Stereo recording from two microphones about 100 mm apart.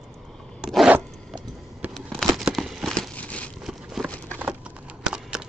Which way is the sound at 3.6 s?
Centre (ahead or behind).